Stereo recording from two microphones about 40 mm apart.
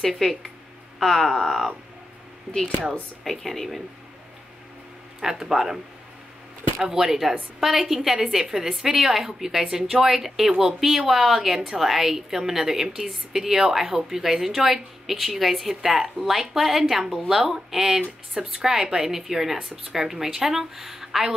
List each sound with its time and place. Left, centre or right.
0.2 s a woman's voice: centre
2.5 s a woman's voice: centre
5.2 s speech: centre
6.8 s a woman's voice: centre